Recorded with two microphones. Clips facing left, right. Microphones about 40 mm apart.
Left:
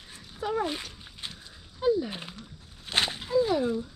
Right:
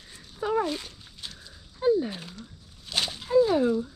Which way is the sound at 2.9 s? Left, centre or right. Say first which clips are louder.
Left 2 dB; left.